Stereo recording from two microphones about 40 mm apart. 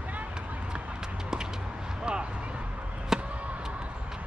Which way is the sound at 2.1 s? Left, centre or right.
Right.